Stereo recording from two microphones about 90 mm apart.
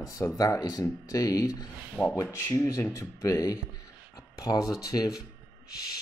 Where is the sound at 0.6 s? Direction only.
40° left (ahead or behind).